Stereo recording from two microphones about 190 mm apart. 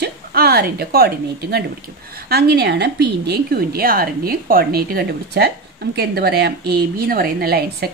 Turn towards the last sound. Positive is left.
turn(degrees=-55)  # may be behind; listen again after turning